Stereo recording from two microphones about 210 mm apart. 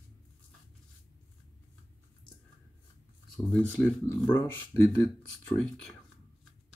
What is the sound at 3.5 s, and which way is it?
Speech, 5° left (ahead or behind).